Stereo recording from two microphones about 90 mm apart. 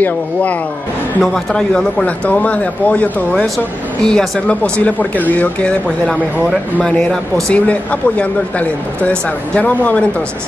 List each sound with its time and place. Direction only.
0.0 s speech: 15° left (ahead or behind)
3.5 s speech: 5° left (ahead or behind)